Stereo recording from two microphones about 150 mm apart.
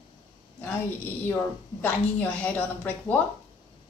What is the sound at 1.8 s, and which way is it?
Speech, 10° left (ahead or behind).